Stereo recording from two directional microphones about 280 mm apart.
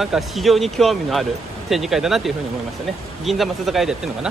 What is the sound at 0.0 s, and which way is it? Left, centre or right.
Speech, centre.